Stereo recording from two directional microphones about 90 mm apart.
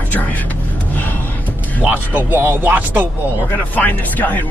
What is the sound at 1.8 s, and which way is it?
Speech, 15° right (ahead or behind).